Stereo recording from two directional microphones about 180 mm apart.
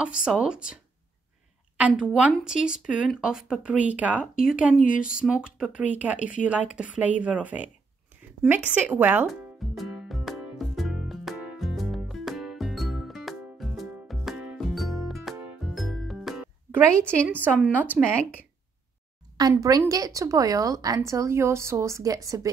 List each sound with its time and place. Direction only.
0.0 s speech: 5° right (ahead or behind)
1.8 s a woman's voice: 5° right (ahead or behind)
8.6 s music: 10° right (ahead or behind)
16.9 s a woman's voice: 5° left (ahead or behind)
17.4 s a woman's voice: 10° right (ahead or behind)
19.3 s a woman's voice: 20° right (ahead or behind)